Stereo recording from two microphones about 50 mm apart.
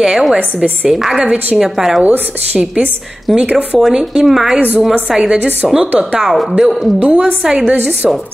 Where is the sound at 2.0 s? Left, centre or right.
Right.